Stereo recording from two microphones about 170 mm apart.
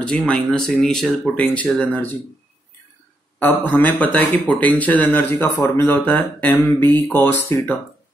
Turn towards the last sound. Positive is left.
turn(degrees=15)  # may be behind; listen again after turning